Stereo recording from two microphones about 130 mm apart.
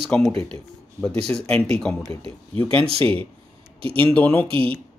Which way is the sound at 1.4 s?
5° left (ahead or behind).